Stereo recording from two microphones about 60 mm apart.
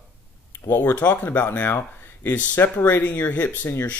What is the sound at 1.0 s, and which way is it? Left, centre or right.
Speech, left.